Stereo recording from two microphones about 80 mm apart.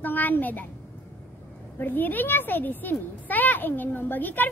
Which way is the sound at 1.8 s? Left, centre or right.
Left.